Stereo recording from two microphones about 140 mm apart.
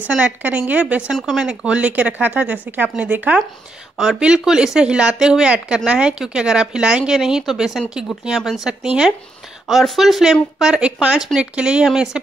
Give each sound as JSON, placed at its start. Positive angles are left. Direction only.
{"t": 0.1, "sound": "speech", "side_deg": -10}